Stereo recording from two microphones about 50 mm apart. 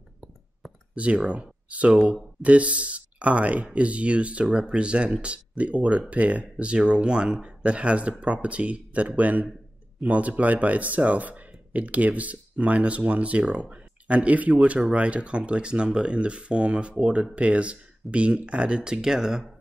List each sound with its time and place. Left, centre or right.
0.9 s speech: right